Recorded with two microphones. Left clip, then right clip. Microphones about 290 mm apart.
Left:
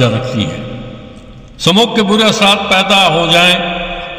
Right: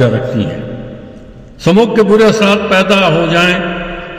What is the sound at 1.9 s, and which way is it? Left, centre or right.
A man's voice, left.